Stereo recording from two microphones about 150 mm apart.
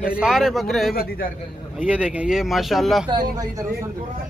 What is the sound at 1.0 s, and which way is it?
Speech, 75° left (ahead or behind).